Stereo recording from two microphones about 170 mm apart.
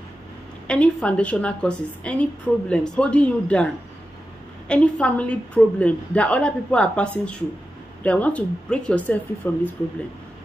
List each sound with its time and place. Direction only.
0.7 s a woman's voice: 5° left (ahead or behind)